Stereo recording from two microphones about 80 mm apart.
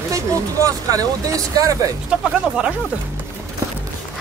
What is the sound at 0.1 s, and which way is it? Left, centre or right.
Speech, right.